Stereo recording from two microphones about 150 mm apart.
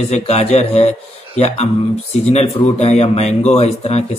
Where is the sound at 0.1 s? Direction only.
45° left (ahead or behind).